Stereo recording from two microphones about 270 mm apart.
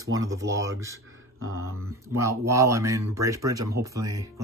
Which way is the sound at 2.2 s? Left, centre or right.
Centre.